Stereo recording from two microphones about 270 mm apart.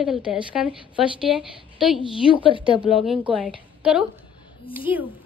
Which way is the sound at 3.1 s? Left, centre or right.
Centre.